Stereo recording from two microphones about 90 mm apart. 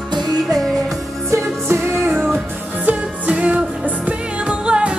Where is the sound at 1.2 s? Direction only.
30° right (ahead or behind).